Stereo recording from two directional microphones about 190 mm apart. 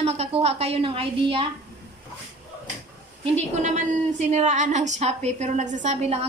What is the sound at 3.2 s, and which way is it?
A woman's voice, 35° right (ahead or behind).